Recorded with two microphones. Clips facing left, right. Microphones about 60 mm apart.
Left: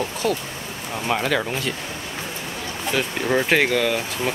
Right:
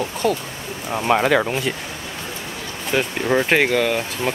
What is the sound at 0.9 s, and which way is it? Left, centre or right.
Speech, right.